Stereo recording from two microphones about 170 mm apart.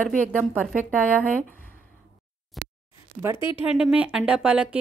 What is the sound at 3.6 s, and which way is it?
Speech, 5° right (ahead or behind).